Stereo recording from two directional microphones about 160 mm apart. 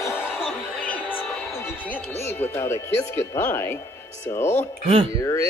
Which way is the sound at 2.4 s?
15° left (ahead or behind).